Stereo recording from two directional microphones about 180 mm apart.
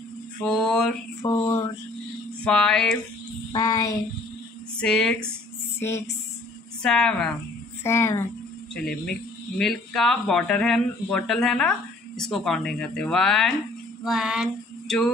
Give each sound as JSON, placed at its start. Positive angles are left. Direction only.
{"t": 0.5, "sound": "speech", "side_deg": 5}
{"t": 1.2, "sound": "a sound", "side_deg": 20}
{"t": 2.4, "sound": "speech", "side_deg": 5}
{"t": 3.5, "sound": "a sound", "side_deg": 20}
{"t": 4.7, "sound": "speech", "side_deg": 5}
{"t": 5.8, "sound": "speech", "side_deg": 15}
{"t": 6.8, "sound": "speech", "side_deg": 5}
{"t": 7.8, "sound": "speech", "side_deg": 15}
{"t": 14.0, "sound": "female singing", "side_deg": -5}